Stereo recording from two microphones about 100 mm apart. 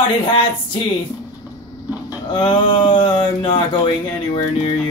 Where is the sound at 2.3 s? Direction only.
50° left (ahead or behind).